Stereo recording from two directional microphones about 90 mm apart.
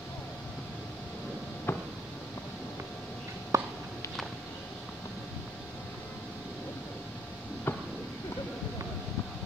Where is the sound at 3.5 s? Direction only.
35° right (ahead or behind).